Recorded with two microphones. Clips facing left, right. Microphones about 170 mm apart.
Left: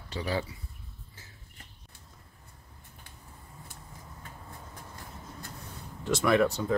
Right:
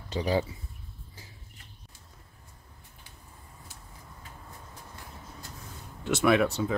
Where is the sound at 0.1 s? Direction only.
20° right (ahead or behind).